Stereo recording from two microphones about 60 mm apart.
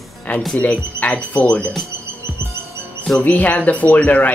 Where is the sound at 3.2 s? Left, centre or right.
Left.